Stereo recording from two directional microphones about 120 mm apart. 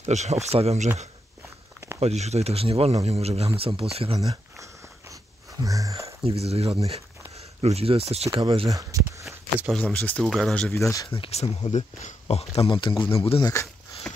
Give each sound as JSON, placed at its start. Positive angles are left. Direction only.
{"t": 0.0, "sound": "speech", "side_deg": -70}
{"t": 2.0, "sound": "speech", "side_deg": -65}
{"t": 4.2, "sound": "speech", "side_deg": -30}
{"t": 6.4, "sound": "speech", "side_deg": -60}
{"t": 8.4, "sound": "speech", "side_deg": -40}
{"t": 8.9, "sound": "walk", "side_deg": -30}
{"t": 9.8, "sound": "speech", "side_deg": 10}
{"t": 10.7, "sound": "speech", "side_deg": 25}
{"t": 11.1, "sound": "speech", "side_deg": 55}
{"t": 13.4, "sound": "speech", "side_deg": 25}
{"t": 14.1, "sound": "a sound", "side_deg": 10}